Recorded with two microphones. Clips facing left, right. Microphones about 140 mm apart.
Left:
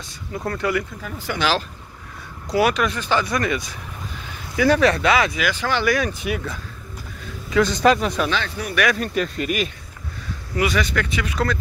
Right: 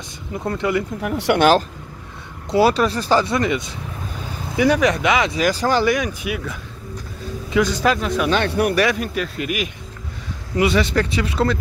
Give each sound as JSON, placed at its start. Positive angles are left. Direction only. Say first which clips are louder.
{"t": 0.5, "sound": "speech", "louder": "right 2 dB", "side_deg": -20}
{"t": 1.0, "sound": "speech", "louder": "right 10 dB", "side_deg": -70}
{"t": 2.5, "sound": "speech", "louder": "right 3 dB", "side_deg": -30}
{"t": 3.3, "sound": "speech", "louder": "right 3 dB", "side_deg": -20}
{"t": 5.3, "sound": "speech", "louder": "right 5 dB", "side_deg": -35}
{"t": 5.9, "sound": "speech", "louder": "right 1 dB", "side_deg": -15}
{"t": 8.3, "sound": "speech", "louder": "right 8 dB", "side_deg": -60}
{"t": 8.9, "sound": "speech", "louder": "left 1 dB", "side_deg": -5}
{"t": 10.5, "sound": "speech", "louder": "right 4 dB", "side_deg": -25}